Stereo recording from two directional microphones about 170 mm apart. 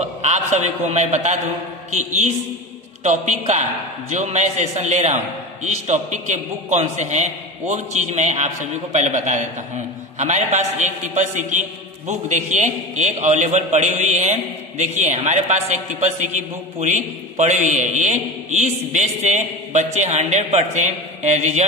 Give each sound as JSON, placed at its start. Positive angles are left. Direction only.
{"t": 0.2, "sound": "a man's voice", "side_deg": -40}
{"t": 3.0, "sound": "a man's voice", "side_deg": -45}